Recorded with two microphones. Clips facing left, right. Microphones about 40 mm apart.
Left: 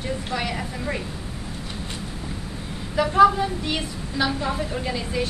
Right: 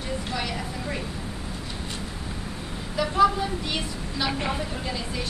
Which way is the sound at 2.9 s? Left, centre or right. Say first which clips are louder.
Left 5 dB; centre.